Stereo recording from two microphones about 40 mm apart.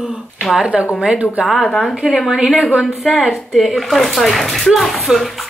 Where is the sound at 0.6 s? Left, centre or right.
Right.